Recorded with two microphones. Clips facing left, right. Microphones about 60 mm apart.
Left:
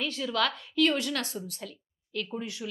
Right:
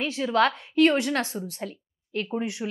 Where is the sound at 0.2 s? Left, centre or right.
Right.